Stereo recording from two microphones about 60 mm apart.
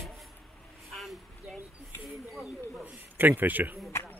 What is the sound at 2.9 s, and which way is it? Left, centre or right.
Speech, right.